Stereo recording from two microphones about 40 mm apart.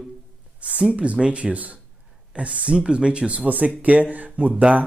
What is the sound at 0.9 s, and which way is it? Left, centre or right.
Speech, right.